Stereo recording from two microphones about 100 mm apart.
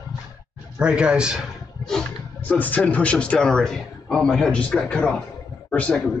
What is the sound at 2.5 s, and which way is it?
A man's voice, 15° left (ahead or behind).